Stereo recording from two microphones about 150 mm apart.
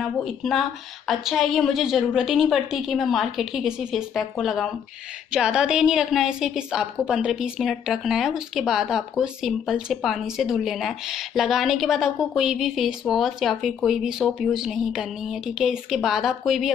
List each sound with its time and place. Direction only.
0.0 s a woman's voice: centre (ahead or behind)